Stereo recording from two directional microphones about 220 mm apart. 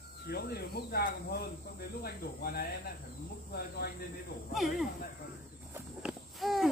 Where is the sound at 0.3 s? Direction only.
45° left (ahead or behind).